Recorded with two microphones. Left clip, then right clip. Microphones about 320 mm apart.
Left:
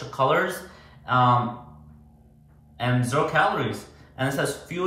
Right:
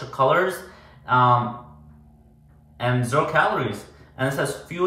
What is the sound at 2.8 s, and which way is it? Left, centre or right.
A man's voice, centre.